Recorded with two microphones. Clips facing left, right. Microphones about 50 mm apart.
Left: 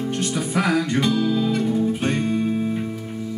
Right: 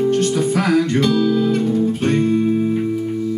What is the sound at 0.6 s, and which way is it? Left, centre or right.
Music, centre.